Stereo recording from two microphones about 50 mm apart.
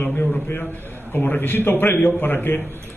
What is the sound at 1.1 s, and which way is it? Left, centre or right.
A man's voice, left.